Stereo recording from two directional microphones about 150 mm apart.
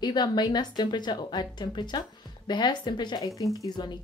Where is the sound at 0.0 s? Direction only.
30° left (ahead or behind).